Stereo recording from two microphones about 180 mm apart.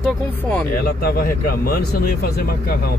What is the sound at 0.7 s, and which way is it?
Speech, 55° left (ahead or behind).